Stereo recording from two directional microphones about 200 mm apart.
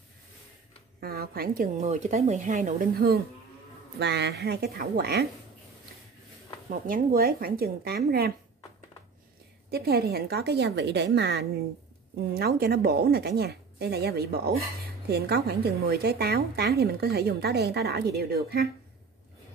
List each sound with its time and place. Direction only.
1.0 s a woman's voice: 50° right (ahead or behind)
1.8 s speech: 35° right (ahead or behind)
4.0 s a woman's voice: 60° right (ahead or behind)
6.7 s a woman's voice: 45° right (ahead or behind)
9.7 s a woman's voice: 50° right (ahead or behind)